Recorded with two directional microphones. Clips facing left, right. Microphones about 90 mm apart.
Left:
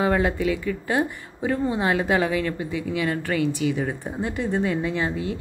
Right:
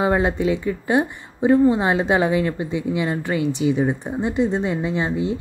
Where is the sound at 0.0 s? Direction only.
20° right (ahead or behind).